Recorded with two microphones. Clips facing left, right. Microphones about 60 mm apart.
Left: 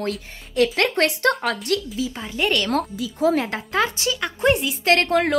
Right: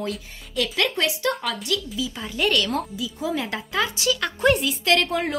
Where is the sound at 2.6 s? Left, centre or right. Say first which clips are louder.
Left 3 dB; left.